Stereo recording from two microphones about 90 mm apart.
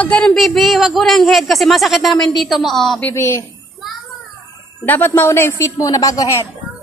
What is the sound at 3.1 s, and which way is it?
Speech, 30° left (ahead or behind).